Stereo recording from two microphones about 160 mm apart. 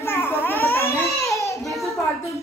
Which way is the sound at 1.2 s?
20° left (ahead or behind).